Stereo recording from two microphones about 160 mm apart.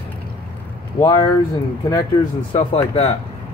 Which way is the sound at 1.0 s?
30° left (ahead or behind).